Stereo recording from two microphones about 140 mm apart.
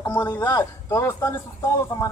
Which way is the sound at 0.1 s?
15° left (ahead or behind).